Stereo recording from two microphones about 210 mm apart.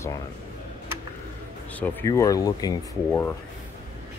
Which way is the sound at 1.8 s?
10° left (ahead or behind).